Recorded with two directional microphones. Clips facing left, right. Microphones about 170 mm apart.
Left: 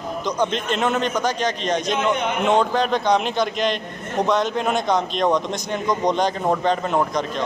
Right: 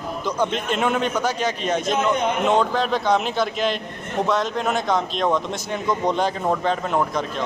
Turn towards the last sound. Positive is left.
turn(degrees=-5)  # may be behind; listen again after turning